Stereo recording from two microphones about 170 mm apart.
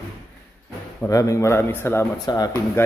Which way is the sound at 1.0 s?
20° left (ahead or behind).